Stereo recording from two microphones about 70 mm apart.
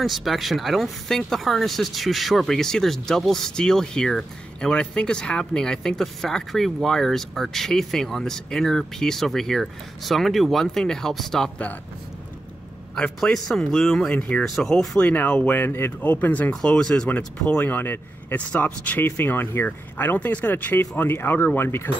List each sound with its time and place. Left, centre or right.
0.0 s speech: centre
13.2 s speech: centre
14.4 s speech: centre
15.0 s speech: left
17.6 s speech: left